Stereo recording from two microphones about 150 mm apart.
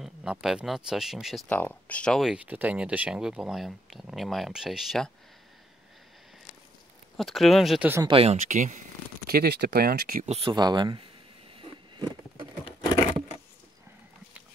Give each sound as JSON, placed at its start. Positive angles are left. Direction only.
{"t": 0.0, "sound": "speech", "side_deg": -5}
{"t": 1.5, "sound": "speech", "side_deg": 10}
{"t": 7.2, "sound": "speech", "side_deg": 0}
{"t": 8.1, "sound": "speech", "side_deg": -40}
{"t": 8.5, "sound": "speech", "side_deg": -55}
{"t": 9.3, "sound": "speech", "side_deg": -90}
{"t": 10.2, "sound": "speech", "side_deg": -45}
{"t": 10.5, "sound": "speech", "side_deg": -30}